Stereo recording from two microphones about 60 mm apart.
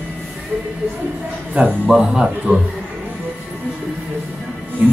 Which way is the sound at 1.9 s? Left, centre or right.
Centre.